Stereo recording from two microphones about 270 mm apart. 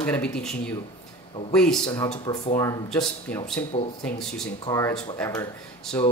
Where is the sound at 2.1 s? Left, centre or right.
Left.